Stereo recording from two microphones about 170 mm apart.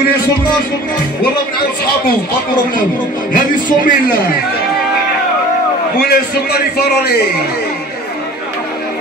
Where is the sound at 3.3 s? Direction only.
55° left (ahead or behind).